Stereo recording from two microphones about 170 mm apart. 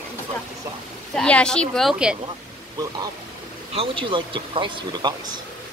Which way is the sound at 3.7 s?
30° right (ahead or behind).